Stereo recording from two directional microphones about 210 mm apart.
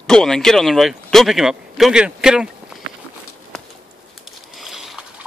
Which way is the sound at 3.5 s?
5° left (ahead or behind).